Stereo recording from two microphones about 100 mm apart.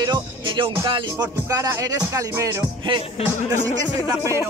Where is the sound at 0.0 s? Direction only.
50° right (ahead or behind).